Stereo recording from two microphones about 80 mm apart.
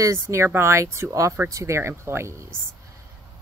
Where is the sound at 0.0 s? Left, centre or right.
Right.